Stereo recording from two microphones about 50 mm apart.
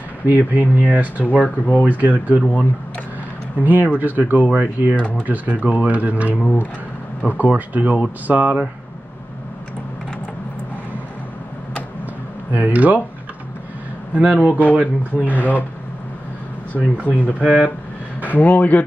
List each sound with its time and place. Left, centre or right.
0.3 s speech: right
2.4 s speech: left
3.6 s speech: right
6.4 s speech: left
7.2 s speech: right
12.5 s speech: right
14.1 s speech: right
16.7 s speech: right
17.0 s speech: left
17.4 s speech: right
18.2 s speech: left